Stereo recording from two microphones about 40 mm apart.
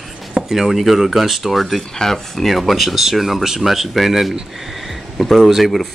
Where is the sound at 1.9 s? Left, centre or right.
Centre.